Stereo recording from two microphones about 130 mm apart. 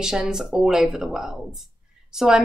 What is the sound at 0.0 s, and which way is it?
A woman's voice, 5° right (ahead or behind).